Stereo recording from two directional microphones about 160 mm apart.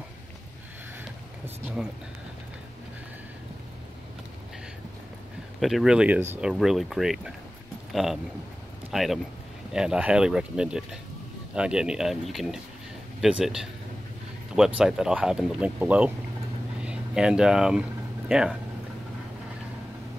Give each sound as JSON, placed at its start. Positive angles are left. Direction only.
{"t": 1.4, "sound": "speech", "side_deg": -5}
{"t": 5.6, "sound": "a man's voice", "side_deg": 0}
{"t": 14.8, "sound": "speech", "side_deg": -5}